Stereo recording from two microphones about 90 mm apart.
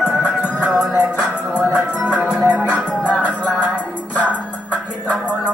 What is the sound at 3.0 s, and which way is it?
Music, 15° left (ahead or behind).